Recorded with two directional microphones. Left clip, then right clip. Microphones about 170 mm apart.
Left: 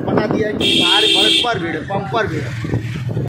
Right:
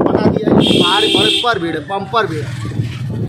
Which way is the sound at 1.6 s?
20° right (ahead or behind).